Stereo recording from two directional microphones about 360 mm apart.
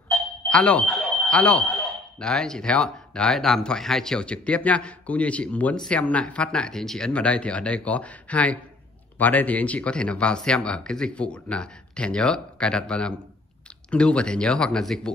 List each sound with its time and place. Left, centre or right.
0.5 s speech: centre